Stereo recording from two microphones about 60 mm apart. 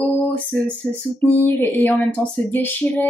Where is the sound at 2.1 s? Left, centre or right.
Left.